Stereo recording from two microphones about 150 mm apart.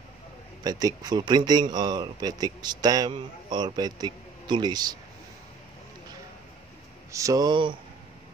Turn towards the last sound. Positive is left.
turn(degrees=-30)  # may be behind; listen again after turning